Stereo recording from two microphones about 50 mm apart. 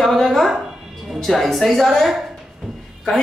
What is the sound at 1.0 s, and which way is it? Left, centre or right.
A woman's voice, centre.